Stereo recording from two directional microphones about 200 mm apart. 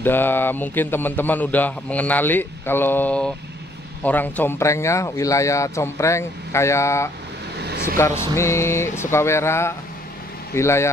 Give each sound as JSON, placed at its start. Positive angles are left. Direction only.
{"t": 0.0, "sound": "a man's voice", "side_deg": 10}
{"t": 7.5, "sound": "vehicle", "side_deg": -55}
{"t": 7.8, "sound": "a man's voice", "side_deg": 15}